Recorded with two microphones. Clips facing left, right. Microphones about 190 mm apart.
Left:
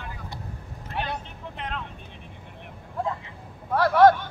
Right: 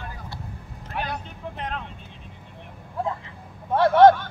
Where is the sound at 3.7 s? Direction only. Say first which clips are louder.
Right 3 dB; 25° right (ahead or behind).